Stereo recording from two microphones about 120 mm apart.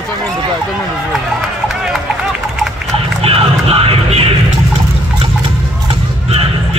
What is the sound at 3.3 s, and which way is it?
Music, 55° right (ahead or behind).